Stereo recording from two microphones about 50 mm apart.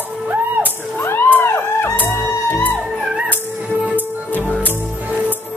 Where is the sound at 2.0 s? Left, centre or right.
Left.